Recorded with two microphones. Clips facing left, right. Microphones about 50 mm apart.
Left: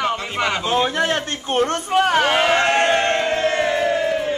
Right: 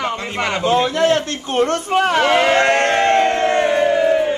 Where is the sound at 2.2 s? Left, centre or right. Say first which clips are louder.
Right 3 dB; right.